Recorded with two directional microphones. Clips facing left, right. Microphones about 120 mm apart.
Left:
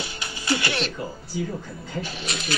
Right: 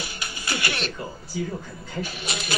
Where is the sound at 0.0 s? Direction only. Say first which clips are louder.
Left 1 dB; 25° left (ahead or behind).